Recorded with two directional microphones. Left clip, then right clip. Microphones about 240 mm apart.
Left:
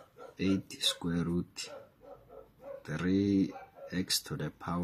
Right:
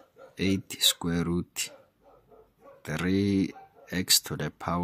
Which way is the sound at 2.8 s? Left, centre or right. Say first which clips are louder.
Right 4 dB; right.